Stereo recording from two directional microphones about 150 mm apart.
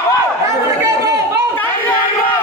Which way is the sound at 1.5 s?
10° left (ahead or behind).